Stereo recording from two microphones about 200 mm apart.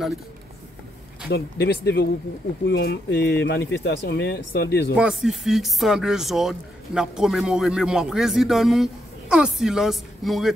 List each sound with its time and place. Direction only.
1.3 s speech: 55° left (ahead or behind)
4.9 s speech: 5° right (ahead or behind)